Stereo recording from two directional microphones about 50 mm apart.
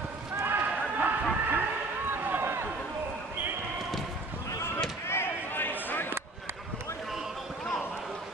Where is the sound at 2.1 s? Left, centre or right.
Right.